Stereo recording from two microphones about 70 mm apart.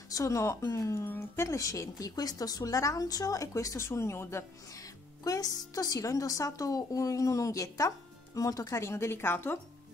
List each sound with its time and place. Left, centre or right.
0.1 s a woman's voice: left
1.0 s a woman's voice: left
4.7 s a woman's voice: left